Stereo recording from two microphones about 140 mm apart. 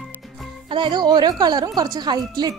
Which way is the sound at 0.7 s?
35° right (ahead or behind).